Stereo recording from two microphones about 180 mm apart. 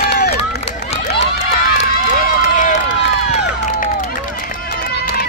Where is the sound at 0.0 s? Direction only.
60° left (ahead or behind).